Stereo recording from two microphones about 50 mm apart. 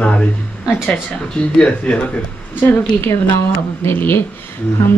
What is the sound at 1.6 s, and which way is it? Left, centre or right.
Speech, left.